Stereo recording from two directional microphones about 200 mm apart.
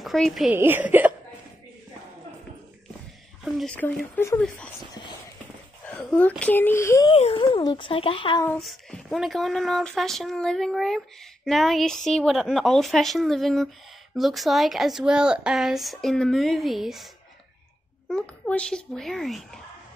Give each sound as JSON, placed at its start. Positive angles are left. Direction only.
{"t": 0.0, "sound": "a woman's voice", "side_deg": 0}
{"t": 3.5, "sound": "speech", "side_deg": 5}
{"t": 5.9, "sound": "speech", "side_deg": 5}
{"t": 7.2, "sound": "speech", "side_deg": 30}
{"t": 8.5, "sound": "speech", "side_deg": 5}
{"t": 18.1, "sound": "speech", "side_deg": 5}